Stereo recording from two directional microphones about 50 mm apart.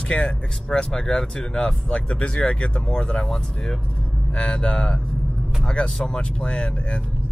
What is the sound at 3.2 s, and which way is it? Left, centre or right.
Speech, centre.